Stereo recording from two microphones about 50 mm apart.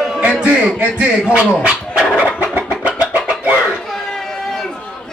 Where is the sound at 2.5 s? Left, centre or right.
Right.